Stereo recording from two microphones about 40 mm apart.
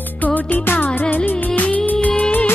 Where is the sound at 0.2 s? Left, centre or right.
Left.